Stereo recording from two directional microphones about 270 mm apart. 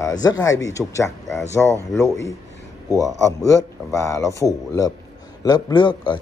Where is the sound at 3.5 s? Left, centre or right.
Centre.